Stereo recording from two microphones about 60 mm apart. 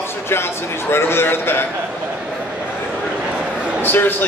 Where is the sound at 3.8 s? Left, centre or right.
Left.